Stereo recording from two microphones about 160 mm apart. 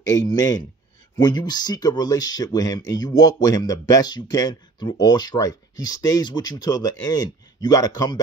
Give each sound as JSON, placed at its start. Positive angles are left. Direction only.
{"t": 0.0, "sound": "speech", "side_deg": 25}